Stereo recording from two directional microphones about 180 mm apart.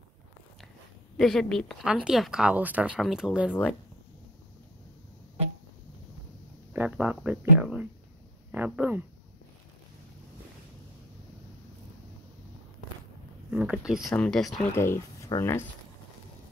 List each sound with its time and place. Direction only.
1.1 s speech: 5° left (ahead or behind)
6.7 s speech: 10° right (ahead or behind)
13.5 s speech: 5° right (ahead or behind)
13.9 s speech: 20° left (ahead or behind)
14.2 s speech: centre (ahead or behind)
14.7 s speech: 15° left (ahead or behind)